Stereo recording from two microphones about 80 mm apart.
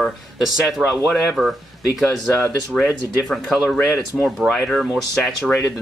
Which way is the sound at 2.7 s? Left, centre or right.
Centre.